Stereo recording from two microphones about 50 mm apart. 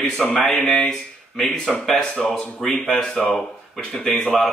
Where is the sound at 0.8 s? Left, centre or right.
Centre.